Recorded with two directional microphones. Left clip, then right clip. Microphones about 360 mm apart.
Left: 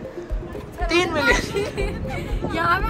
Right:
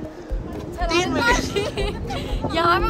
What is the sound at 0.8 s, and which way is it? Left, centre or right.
Speech, centre.